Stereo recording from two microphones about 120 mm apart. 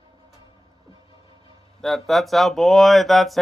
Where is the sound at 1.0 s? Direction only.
45° left (ahead or behind).